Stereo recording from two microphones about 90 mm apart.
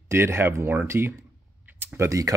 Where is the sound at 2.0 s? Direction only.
40° right (ahead or behind).